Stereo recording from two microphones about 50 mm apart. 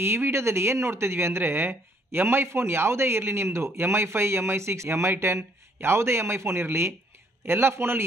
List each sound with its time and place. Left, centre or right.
0.0 s speech: right
3.4 s a man's voice: right